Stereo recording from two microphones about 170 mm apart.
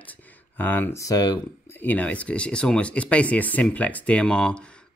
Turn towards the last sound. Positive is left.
turn(degrees=5)  # may be behind; listen again after turning